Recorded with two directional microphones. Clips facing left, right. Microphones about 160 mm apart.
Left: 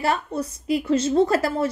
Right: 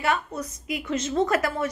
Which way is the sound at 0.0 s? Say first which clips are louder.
Left 3 dB; 35° left (ahead or behind).